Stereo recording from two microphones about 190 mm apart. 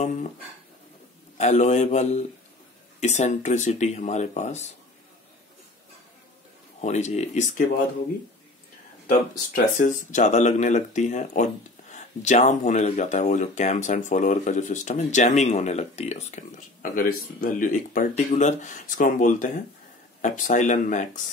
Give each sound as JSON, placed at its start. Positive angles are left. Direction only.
{"t": 0.0, "sound": "speech", "side_deg": 40}
{"t": 1.4, "sound": "speech", "side_deg": 40}
{"t": 6.8, "sound": "speech", "side_deg": 35}
{"t": 9.8, "sound": "speech", "side_deg": 40}